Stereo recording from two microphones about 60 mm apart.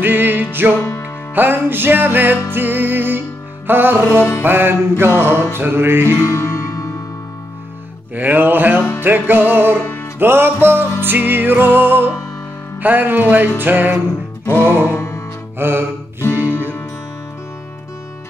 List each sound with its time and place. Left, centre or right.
0.0 s music: right
6.2 s music: left
8.1 s music: right
14.4 s music: left
14.7 s music: left
15.0 s music: left
15.6 s music: right
16.3 s music: left